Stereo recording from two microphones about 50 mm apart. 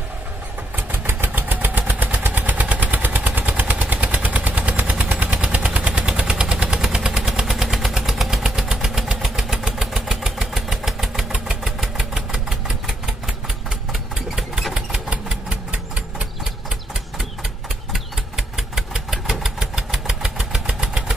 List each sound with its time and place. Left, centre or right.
0.7 s vehicle: right; by 11.2 s centre
11.3 s engine: centre
14.7 s engine: centre
17.9 s engine: centre